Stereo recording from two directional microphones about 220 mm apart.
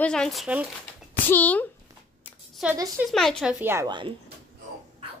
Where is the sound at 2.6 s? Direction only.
10° right (ahead or behind).